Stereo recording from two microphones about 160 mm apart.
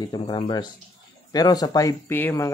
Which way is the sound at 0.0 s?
25° left (ahead or behind).